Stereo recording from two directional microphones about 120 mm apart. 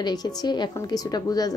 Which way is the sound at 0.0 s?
35° left (ahead or behind).